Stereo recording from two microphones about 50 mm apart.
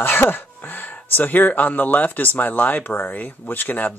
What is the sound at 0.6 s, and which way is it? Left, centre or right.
Speech, left.